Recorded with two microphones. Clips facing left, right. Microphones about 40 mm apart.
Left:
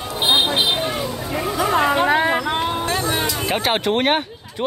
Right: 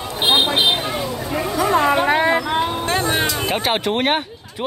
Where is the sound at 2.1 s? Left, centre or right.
Right.